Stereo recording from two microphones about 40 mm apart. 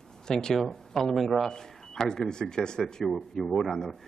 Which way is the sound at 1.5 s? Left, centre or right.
Centre.